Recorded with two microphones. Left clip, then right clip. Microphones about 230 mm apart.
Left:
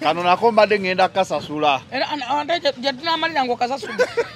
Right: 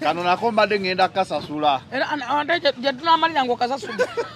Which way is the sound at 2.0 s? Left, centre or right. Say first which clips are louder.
Even; centre.